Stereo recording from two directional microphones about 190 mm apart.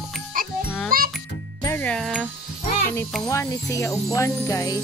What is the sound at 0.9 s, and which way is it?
Speech, 50° right (ahead or behind).